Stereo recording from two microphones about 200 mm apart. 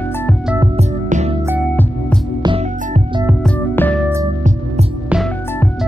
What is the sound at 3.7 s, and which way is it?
Music, 10° left (ahead or behind).